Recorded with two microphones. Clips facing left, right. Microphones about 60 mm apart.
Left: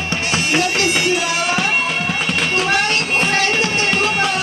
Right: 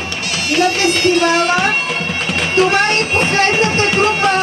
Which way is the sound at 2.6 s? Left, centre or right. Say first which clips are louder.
Right 3 dB; right.